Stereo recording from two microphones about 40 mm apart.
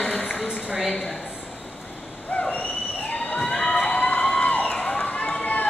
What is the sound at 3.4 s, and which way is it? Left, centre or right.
Fire alarm, centre.